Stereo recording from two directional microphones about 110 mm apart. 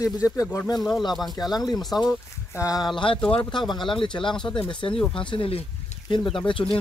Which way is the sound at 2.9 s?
50° left (ahead or behind).